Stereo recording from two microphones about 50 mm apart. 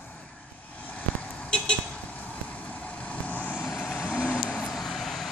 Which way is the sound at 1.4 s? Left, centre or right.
Centre.